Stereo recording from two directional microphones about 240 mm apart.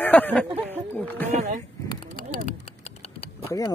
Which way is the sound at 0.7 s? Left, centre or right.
Centre.